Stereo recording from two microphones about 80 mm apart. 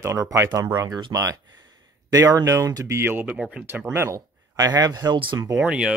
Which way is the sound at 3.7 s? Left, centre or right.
Right.